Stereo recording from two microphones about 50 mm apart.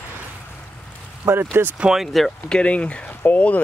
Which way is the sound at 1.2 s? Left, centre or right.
Right.